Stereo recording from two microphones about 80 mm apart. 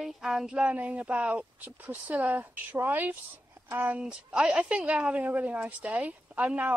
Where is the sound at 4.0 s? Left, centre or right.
Centre.